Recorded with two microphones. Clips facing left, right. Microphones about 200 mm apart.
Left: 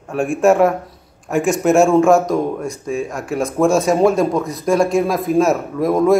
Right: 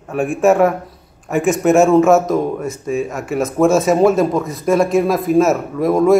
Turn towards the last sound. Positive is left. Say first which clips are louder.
# right 1 dB
turn(degrees=0)  # may be behind; listen again after turning